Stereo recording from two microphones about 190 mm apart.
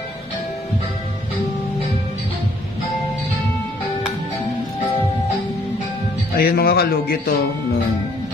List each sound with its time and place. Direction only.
6.3 s speech: 55° left (ahead or behind)